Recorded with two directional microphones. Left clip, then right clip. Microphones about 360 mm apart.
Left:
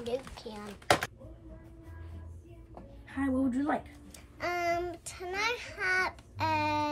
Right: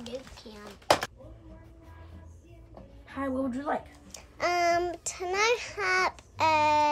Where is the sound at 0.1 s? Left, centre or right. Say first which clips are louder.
Left 4 dB; centre.